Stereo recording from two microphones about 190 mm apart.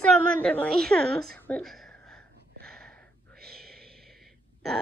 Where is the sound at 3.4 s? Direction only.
55° right (ahead or behind).